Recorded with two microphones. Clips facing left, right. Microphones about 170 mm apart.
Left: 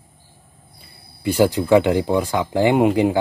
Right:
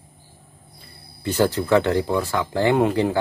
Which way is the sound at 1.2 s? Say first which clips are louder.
Left 4 dB; 15° left (ahead or behind).